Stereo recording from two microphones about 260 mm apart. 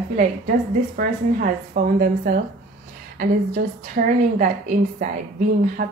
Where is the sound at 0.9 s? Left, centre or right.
Right.